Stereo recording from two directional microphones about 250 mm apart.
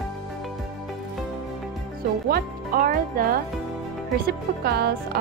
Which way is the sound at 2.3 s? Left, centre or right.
Right.